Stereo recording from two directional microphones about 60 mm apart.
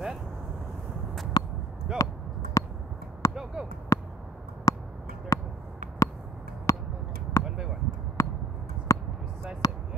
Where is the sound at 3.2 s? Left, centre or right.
Left.